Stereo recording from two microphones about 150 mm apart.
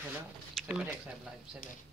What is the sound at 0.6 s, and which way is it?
Pigeon, centre (ahead or behind).